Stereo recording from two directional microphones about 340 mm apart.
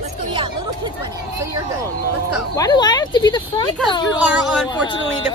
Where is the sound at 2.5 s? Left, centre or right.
Centre.